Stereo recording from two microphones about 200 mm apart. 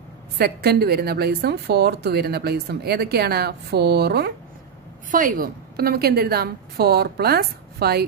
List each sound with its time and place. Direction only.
0.4 s speech: 50° right (ahead or behind)
5.1 s speech: 45° right (ahead or behind)